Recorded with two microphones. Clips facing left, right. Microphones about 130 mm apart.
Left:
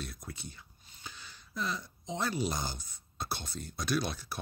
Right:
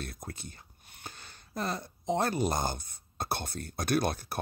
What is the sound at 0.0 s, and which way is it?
Speech, 50° right (ahead or behind).